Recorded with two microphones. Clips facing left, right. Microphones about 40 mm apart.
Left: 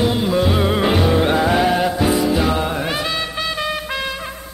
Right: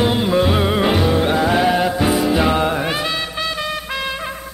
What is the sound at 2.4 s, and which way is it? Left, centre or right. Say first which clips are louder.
Music: right 2 dB; right.